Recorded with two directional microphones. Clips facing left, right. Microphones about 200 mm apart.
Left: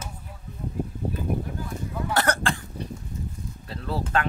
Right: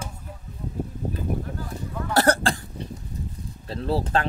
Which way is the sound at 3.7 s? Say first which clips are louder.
Right 5 dB; 35° right (ahead or behind).